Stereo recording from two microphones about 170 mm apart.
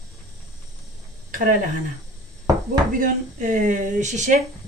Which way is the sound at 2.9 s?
50° right (ahead or behind).